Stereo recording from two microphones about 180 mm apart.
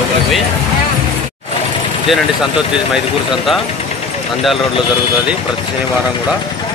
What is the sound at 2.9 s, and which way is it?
Speech, 5° right (ahead or behind).